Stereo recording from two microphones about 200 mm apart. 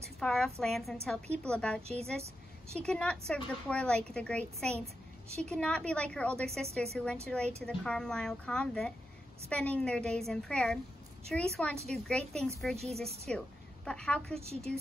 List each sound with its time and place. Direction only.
0.2 s a woman's voice: centre (ahead or behind)
1.8 s a woman's voice: 30° right (ahead or behind)
2.8 s a woman's voice: 5° left (ahead or behind)
14.4 s a woman's voice: 30° right (ahead or behind)